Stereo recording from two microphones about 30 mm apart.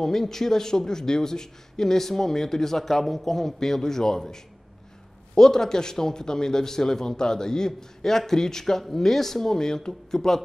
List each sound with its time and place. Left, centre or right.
0.0 s a man's voice: centre